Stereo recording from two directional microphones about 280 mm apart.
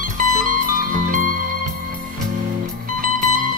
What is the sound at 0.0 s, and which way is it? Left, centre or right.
Music, right.